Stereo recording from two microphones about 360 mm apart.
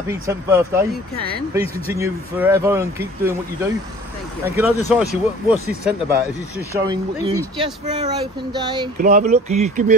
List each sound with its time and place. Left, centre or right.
0.3 s speech: centre
4.6 s speech: centre